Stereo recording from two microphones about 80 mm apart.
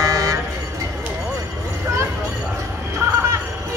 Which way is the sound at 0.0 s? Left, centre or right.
Right.